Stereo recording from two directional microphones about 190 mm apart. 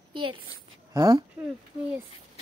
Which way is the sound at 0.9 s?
15° right (ahead or behind).